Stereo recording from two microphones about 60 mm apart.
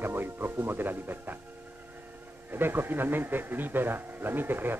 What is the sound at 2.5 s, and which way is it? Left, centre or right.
A man's voice, right.